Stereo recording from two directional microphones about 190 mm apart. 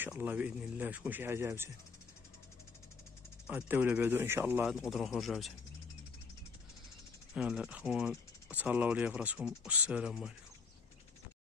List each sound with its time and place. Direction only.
0.0 s speech: 10° right (ahead or behind)
3.4 s speech: 10° right (ahead or behind)
7.3 s speech: 5° right (ahead or behind)